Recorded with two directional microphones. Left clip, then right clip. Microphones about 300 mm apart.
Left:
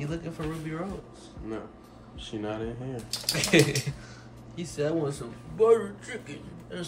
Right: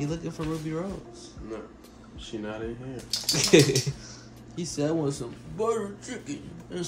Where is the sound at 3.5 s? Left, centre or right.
Centre.